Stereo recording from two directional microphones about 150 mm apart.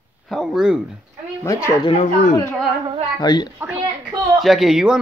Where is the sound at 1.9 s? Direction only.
45° left (ahead or behind).